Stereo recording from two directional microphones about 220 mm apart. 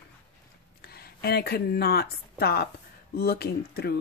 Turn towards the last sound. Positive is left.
turn(degrees=45)  # may be behind; listen again after turning